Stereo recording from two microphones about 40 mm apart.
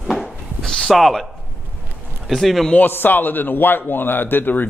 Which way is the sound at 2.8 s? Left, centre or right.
Left.